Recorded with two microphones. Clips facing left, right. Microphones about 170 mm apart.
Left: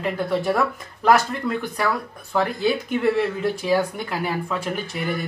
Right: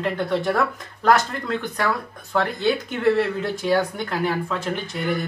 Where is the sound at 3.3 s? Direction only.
5° left (ahead or behind).